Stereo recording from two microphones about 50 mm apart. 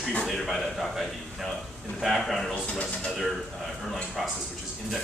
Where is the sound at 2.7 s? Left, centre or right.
Centre.